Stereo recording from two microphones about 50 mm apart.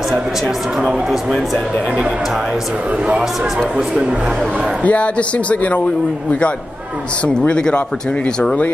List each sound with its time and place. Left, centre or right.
4.8 s speech: left
7.2 s speech: centre